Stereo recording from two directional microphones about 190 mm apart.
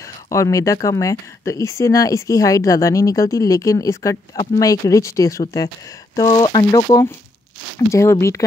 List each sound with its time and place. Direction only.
0.3 s speech: 15° left (ahead or behind)